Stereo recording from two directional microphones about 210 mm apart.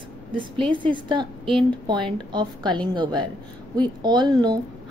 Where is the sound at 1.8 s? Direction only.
20° right (ahead or behind).